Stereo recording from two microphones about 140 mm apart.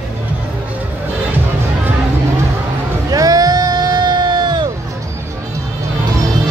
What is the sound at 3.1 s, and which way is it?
Music, 25° right (ahead or behind).